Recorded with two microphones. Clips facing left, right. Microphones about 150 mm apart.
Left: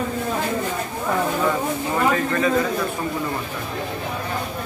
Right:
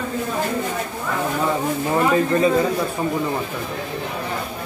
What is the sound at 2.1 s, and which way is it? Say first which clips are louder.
Speech: right 4 dB; 25° right (ahead or behind).